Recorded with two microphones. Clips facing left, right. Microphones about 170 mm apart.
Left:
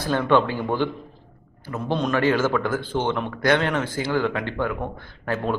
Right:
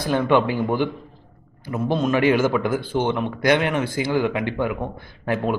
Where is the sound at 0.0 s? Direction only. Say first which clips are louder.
Right 1 dB; 15° right (ahead or behind).